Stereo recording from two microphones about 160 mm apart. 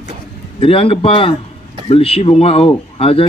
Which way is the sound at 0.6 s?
35° left (ahead or behind).